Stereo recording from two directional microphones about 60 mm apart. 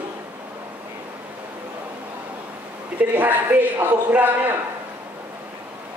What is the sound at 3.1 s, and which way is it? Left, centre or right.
Speech, right.